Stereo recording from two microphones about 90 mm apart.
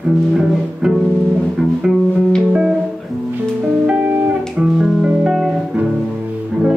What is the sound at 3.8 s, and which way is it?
Music, 15° right (ahead or behind).